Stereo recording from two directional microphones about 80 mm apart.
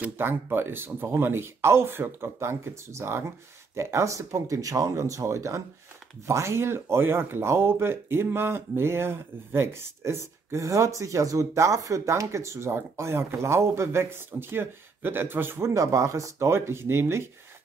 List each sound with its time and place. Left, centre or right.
0.2 s speech: right